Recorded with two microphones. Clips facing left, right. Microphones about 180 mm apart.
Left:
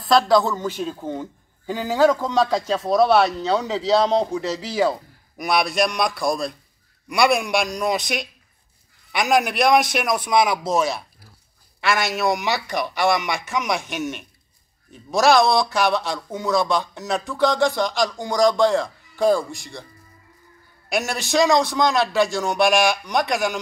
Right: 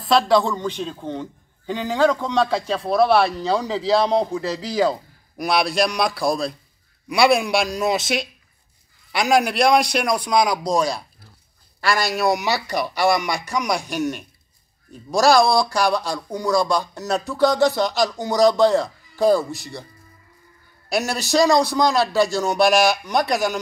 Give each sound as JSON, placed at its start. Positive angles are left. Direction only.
{"t": 0.0, "sound": "a man's voice", "side_deg": 0}
{"t": 4.0, "sound": "a man's voice", "side_deg": -10}
{"t": 4.3, "sound": "a man's voice", "side_deg": 10}
{"t": 15.7, "sound": "a man's voice", "side_deg": 0}
{"t": 21.0, "sound": "a man's voice", "side_deg": 0}
{"t": 21.4, "sound": "a man's voice", "side_deg": 20}
{"t": 22.2, "sound": "a man's voice", "side_deg": 0}